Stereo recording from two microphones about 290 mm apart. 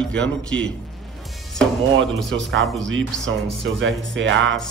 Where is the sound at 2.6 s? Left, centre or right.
Centre.